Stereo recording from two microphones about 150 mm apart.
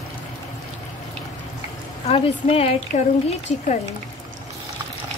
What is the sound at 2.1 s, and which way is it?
A woman's voice, 45° left (ahead or behind).